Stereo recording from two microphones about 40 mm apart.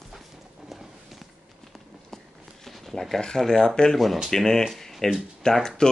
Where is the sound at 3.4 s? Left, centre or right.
Centre.